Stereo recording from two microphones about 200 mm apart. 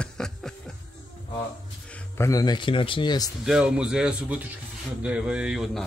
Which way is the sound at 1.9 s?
15° left (ahead or behind).